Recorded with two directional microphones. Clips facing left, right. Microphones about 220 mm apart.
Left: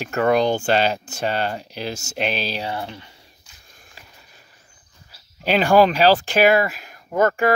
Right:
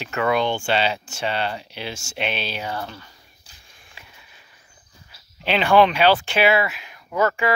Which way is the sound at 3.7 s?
40° left (ahead or behind).